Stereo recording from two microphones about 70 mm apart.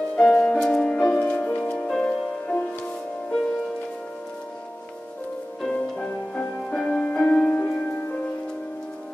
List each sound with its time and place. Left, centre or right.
0.1 s music: centre
5.6 s music: centre